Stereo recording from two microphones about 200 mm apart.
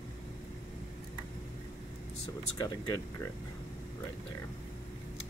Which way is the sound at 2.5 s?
20° left (ahead or behind).